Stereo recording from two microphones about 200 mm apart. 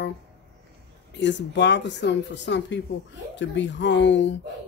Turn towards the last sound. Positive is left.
turn(degrees=65)  # may be behind; listen again after turning